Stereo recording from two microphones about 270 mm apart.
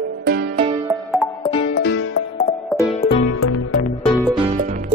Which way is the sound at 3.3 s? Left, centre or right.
Left.